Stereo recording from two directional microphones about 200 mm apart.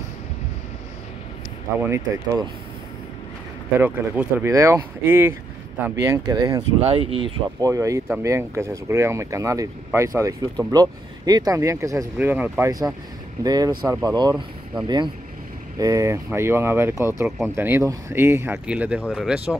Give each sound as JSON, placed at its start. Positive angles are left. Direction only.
{"t": 1.8, "sound": "speech", "side_deg": -15}
{"t": 3.7, "sound": "speech", "side_deg": -10}
{"t": 6.8, "sound": "speech", "side_deg": -30}
{"t": 15.8, "sound": "speech", "side_deg": -15}